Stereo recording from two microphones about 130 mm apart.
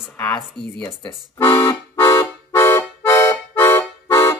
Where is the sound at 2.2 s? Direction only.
20° left (ahead or behind).